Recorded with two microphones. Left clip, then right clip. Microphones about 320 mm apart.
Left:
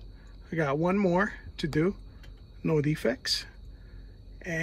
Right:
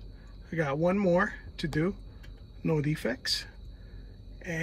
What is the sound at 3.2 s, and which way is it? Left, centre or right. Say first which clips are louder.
Speech: left 1 dB; centre.